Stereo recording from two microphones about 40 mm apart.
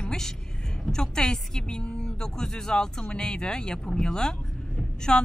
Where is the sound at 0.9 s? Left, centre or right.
Centre.